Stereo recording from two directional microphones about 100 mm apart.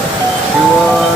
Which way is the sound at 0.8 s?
5° left (ahead or behind).